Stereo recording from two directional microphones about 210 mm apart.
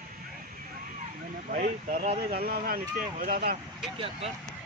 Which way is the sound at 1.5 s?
40° right (ahead or behind).